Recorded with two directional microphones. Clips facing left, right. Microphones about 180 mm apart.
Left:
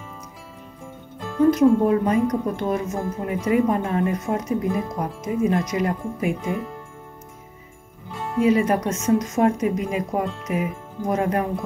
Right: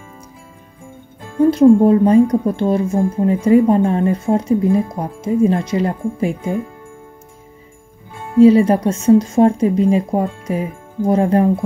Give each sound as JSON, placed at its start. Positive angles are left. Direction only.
{"t": 1.4, "sound": "speech", "side_deg": -30}
{"t": 8.4, "sound": "speech", "side_deg": -30}